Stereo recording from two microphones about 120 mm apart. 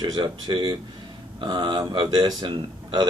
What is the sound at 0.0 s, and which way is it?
A man's voice, 40° right (ahead or behind).